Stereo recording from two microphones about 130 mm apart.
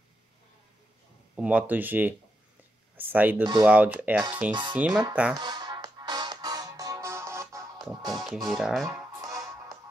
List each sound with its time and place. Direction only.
1.3 s speech: 10° right (ahead or behind)
5.3 s music: 30° right (ahead or behind)
7.8 s speech: centre (ahead or behind)
8.8 s music: 25° right (ahead or behind)